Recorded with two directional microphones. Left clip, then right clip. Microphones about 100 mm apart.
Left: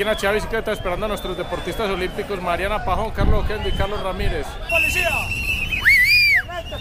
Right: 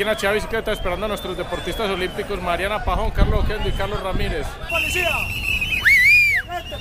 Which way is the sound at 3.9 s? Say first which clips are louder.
Even; 15° right (ahead or behind).